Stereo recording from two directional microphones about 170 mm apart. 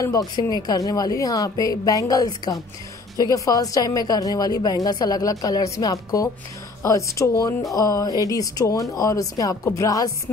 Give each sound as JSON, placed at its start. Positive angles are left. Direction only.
{"t": 0.0, "sound": "a woman's voice", "side_deg": 20}